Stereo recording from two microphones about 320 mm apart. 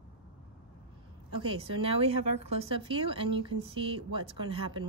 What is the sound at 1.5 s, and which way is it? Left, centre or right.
Speech, centre.